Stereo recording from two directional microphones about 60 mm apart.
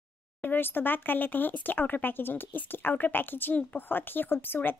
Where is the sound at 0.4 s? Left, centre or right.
Left.